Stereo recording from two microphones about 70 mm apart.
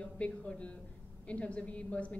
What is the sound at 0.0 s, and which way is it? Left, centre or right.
A woman's voice, centre.